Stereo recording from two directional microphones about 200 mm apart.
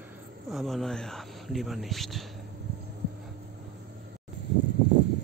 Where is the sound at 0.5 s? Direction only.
Centre (ahead or behind).